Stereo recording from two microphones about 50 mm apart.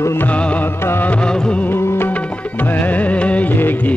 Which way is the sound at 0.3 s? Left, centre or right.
Left.